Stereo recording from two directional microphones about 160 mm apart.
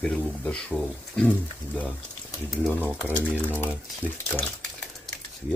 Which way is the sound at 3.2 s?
10° left (ahead or behind).